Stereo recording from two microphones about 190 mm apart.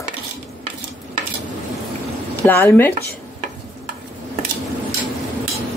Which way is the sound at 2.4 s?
10° left (ahead or behind).